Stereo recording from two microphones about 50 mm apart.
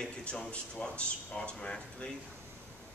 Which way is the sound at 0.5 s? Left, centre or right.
Left.